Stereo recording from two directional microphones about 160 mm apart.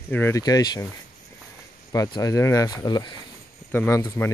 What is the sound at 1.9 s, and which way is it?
Speech, 20° left (ahead or behind).